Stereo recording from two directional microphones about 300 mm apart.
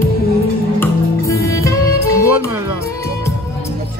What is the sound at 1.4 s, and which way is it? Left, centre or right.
Music, centre.